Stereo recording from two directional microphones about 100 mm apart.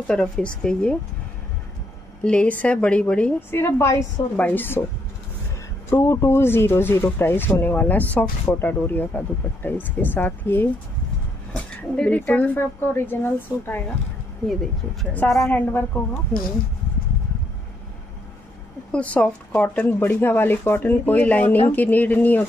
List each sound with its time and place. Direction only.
0.1 s speech: 10° left (ahead or behind)
2.2 s speech: 10° left (ahead or behind)
3.3 s speech: 25° left (ahead or behind)
5.9 s speech: 25° left (ahead or behind)
14.5 s speech: centre (ahead or behind)
15.5 s speech: 15° left (ahead or behind)
18.9 s speech: 15° left (ahead or behind)